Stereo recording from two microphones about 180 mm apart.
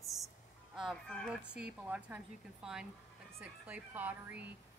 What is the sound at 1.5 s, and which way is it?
Speech, 5° right (ahead or behind).